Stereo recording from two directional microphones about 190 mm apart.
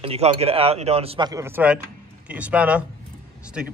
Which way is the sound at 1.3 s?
15° right (ahead or behind).